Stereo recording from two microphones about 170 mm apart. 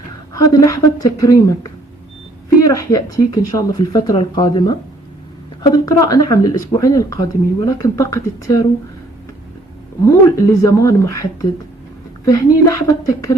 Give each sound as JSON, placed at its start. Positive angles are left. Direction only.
{"t": 0.3, "sound": "speech", "side_deg": 20}
{"t": 5.9, "sound": "speech", "side_deg": 20}
{"t": 10.0, "sound": "speech", "side_deg": 20}
{"t": 12.3, "sound": "speech", "side_deg": 20}